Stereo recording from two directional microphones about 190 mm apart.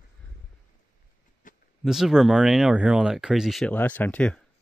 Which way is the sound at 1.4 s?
45° left (ahead or behind).